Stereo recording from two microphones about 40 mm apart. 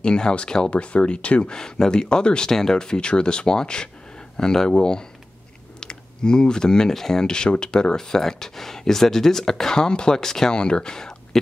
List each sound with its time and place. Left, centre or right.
0.0 s speech: left
1.5 s speech: centre
5.8 s a sound: left
6.9 s speech: centre
7.2 s speech: left